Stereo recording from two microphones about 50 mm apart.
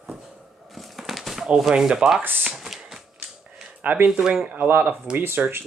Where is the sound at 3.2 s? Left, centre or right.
Right.